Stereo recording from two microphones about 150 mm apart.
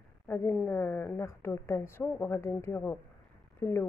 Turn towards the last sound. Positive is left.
turn(degrees=15)  # may be behind; listen again after turning